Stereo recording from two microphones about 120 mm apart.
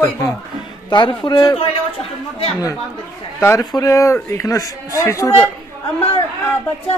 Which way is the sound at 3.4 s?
30° left (ahead or behind).